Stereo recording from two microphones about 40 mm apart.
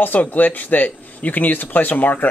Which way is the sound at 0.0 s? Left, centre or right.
Left.